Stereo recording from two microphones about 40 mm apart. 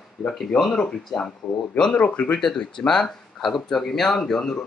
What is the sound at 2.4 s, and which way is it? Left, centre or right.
Speech, centre.